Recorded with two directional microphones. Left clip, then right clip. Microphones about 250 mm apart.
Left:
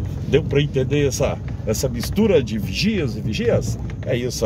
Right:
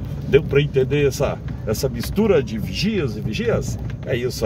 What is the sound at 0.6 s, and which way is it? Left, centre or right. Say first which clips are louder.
Speech: right 2 dB; centre.